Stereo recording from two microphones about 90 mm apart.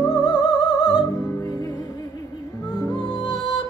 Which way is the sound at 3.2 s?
5° right (ahead or behind).